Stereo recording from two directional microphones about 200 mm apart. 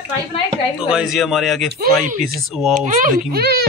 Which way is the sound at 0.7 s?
5° right (ahead or behind).